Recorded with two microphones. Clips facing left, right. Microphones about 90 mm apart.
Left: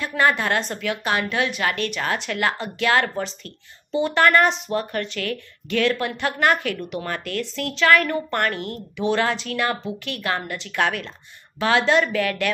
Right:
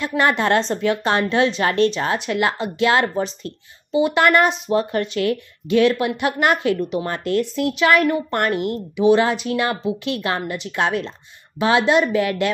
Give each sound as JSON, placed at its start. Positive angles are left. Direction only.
{"t": 0.0, "sound": "a woman's voice", "side_deg": -20}